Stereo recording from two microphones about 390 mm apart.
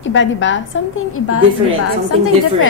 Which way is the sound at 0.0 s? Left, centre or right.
Left.